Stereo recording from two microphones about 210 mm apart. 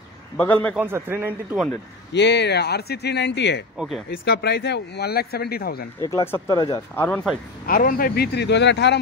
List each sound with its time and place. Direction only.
0.4 s speech: 10° left (ahead or behind)
0.7 s speech: 10° right (ahead or behind)
2.1 s speech: 55° left (ahead or behind)
3.7 s speech: centre (ahead or behind)
4.1 s speech: 45° left (ahead or behind)
6.0 s speech: 15° left (ahead or behind)
7.0 s speech: 5° left (ahead or behind)
7.6 s speech: 45° left (ahead or behind)